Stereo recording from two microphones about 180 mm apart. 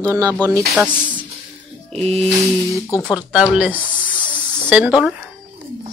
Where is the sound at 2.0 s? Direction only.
35° right (ahead or behind).